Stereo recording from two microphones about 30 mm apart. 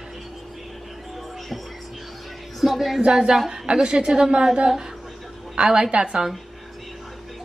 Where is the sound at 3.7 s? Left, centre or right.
Right.